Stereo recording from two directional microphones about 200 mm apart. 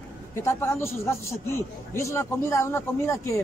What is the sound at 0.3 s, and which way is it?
A man's voice, 15° left (ahead or behind).